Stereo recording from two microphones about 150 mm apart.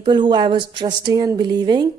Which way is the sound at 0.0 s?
30° right (ahead or behind).